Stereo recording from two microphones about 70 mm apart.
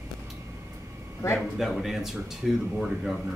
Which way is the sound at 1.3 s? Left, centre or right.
Centre.